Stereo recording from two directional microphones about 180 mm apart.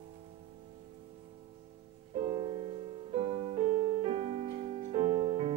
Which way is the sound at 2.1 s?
35° right (ahead or behind).